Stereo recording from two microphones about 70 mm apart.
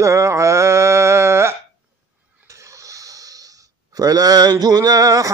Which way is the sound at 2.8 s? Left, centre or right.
Right.